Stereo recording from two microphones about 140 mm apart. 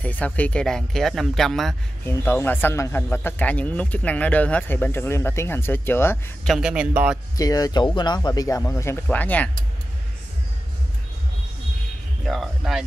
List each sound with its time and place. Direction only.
0.0 s speech: 10° left (ahead or behind)
2.0 s speech: 15° left (ahead or behind)
6.4 s a man's voice: 5° right (ahead or behind)
7.3 s speech: 25° left (ahead or behind)
9.0 s speech: 10° left (ahead or behind)
12.3 s speech: centre (ahead or behind)